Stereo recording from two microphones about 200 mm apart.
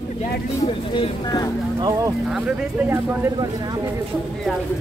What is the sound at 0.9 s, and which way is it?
Speech, 20° left (ahead or behind).